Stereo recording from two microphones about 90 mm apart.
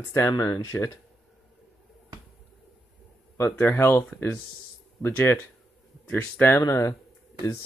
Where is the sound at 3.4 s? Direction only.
25° left (ahead or behind).